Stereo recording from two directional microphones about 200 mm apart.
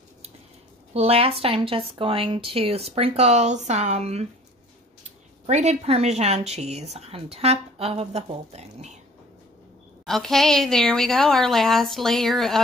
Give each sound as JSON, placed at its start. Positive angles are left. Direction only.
{"t": 0.9, "sound": "speech", "side_deg": -30}
{"t": 5.5, "sound": "a woman's voice", "side_deg": -35}
{"t": 10.0, "sound": "speech", "side_deg": 0}